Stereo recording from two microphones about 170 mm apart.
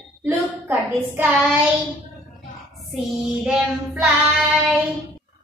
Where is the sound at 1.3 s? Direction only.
5° right (ahead or behind).